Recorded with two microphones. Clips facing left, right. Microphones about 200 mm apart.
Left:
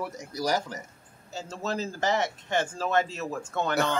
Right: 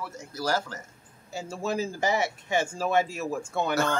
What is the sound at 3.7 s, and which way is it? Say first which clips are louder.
Speech: even; 15° left (ahead or behind).